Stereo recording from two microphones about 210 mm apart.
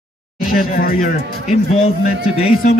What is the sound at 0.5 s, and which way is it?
Speech, 45° left (ahead or behind).